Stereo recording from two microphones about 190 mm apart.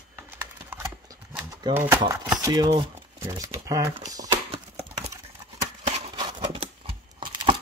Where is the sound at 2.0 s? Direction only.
20° right (ahead or behind).